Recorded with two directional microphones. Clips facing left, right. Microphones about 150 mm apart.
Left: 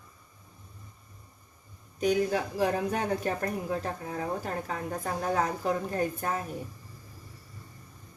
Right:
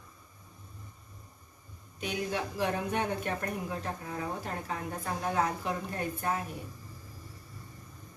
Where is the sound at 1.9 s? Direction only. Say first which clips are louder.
Left 7 dB; 40° left (ahead or behind).